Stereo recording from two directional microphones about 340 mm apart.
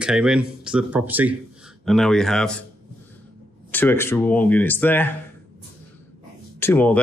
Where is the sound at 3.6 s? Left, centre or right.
Centre.